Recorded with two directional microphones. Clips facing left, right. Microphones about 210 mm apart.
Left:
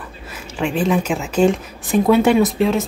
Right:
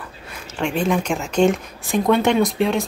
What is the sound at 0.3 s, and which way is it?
A woman's voice, 5° left (ahead or behind).